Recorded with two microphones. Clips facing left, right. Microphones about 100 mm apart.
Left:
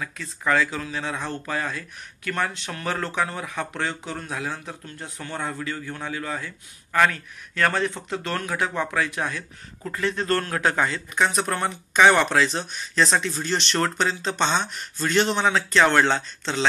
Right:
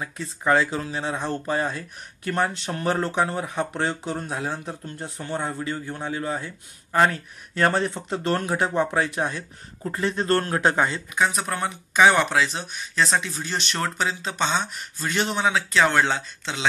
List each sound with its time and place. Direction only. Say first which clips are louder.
0.0 s speech: right 2 dB; 25° right (ahead or behind)
11.1 s speech: left 1 dB; 10° right (ahead or behind)